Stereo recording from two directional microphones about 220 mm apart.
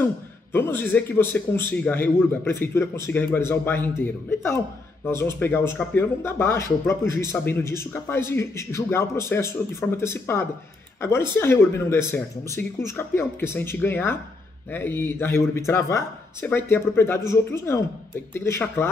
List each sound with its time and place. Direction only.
0.0 s a man's voice: 10° left (ahead or behind)